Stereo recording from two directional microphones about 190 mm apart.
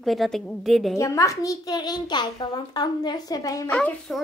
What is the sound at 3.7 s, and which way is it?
Speech, 5° left (ahead or behind).